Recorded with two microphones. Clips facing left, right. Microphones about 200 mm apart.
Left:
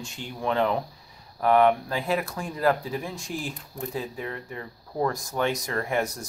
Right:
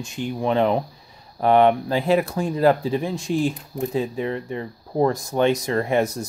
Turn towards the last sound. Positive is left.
turn(degrees=-25)  # may be behind; listen again after turning